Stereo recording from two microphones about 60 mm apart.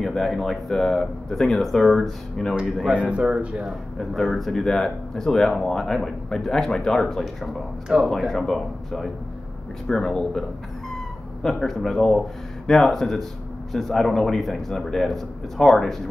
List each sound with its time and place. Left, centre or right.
0.0 s speech: centre
2.9 s speech: centre
3.6 s speech: centre
7.9 s speech: centre
8.3 s speech: centre
11.4 s speech: centre